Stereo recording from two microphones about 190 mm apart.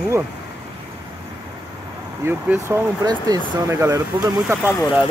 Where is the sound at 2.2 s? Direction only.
10° right (ahead or behind).